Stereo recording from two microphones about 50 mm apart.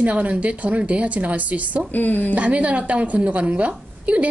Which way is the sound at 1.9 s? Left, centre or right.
Left.